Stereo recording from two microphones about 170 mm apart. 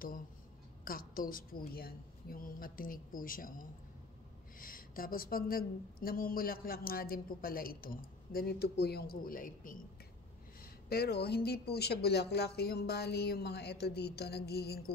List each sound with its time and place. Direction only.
0.8 s a woman's voice: 55° left (ahead or behind)
10.6 s speech: 65° left (ahead or behind)